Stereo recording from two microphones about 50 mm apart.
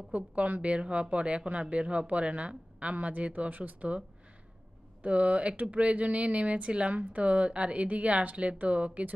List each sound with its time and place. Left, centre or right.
0.1 s speech: right
5.0 s speech: right